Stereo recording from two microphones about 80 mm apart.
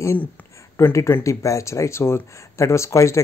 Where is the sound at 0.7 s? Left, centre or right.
Left.